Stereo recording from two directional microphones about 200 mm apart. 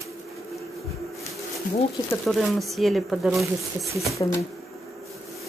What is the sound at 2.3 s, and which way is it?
Speech, centre (ahead or behind).